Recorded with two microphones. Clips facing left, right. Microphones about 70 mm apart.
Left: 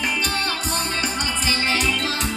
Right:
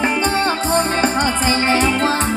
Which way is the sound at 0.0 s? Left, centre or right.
Right.